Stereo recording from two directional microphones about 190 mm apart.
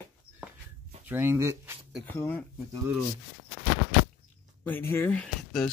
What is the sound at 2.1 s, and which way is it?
Speech, 10° left (ahead or behind).